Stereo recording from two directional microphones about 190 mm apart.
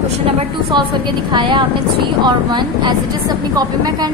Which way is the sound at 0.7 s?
25° right (ahead or behind).